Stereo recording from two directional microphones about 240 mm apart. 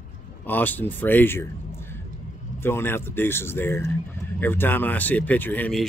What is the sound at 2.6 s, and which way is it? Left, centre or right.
Speech, centre.